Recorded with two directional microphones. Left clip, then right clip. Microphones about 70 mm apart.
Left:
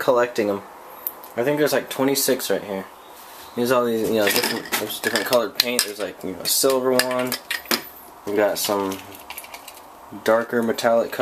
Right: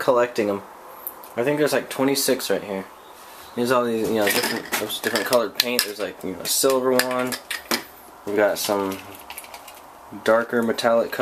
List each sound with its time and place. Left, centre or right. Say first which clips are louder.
0.0 s cutlery: even; centre
3.5 s speech: left 1 dB; centre
5.2 s cutlery: even; centre
7.2 s cutlery: left 1 dB; left
8.4 s cutlery: even; centre
10.2 s cutlery: even; centre